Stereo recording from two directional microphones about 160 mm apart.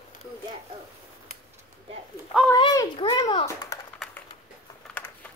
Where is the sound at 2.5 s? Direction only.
25° left (ahead or behind).